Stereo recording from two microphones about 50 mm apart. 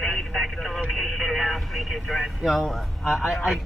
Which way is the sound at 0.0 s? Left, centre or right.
Centre.